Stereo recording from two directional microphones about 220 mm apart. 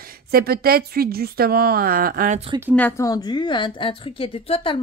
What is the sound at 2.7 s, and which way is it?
A woman's voice, 10° left (ahead or behind).